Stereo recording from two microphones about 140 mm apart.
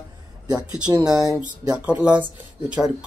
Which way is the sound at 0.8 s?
25° right (ahead or behind).